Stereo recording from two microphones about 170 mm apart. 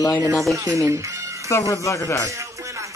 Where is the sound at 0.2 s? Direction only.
20° right (ahead or behind).